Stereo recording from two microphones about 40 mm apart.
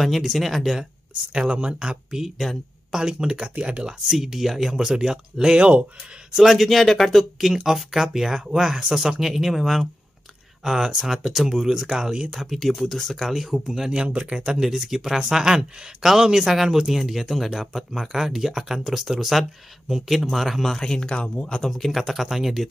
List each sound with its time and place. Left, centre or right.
0.0 s speech: centre
1.5 s speech: right
2.0 s speech: centre
3.3 s speech: right
4.2 s speech: centre
5.6 s speech: right
6.3 s speech: centre
7.4 s speech: centre
12.4 s speech: centre
13.8 s speech: right
14.5 s speech: centre
20.7 s speech: centre
21.2 s speech: left
21.6 s speech: centre